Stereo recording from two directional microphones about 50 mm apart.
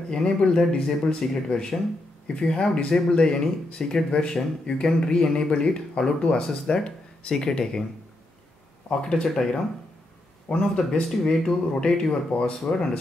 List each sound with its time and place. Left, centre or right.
0.1 s speech: centre
9.0 s speech: centre
10.8 s speech: centre
11.8 s speech: centre